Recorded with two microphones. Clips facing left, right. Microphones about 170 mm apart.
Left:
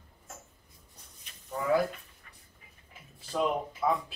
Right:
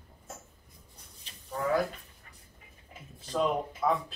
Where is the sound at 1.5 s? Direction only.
5° left (ahead or behind).